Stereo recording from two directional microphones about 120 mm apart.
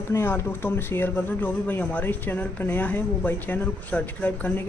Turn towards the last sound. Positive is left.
turn(degrees=15)  # may be behind; listen again after turning